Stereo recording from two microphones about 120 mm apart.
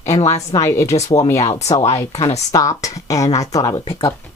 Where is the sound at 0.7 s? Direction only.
25° left (ahead or behind).